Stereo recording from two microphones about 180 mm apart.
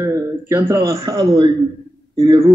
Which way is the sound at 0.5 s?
15° right (ahead or behind).